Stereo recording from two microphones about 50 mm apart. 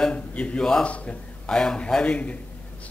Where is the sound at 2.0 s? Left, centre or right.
Left.